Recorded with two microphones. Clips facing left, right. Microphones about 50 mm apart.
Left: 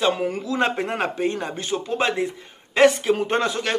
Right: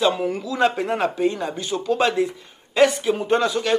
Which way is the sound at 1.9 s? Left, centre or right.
Left.